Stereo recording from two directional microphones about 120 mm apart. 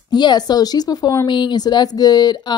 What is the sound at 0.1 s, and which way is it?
A woman's voice, 35° left (ahead or behind).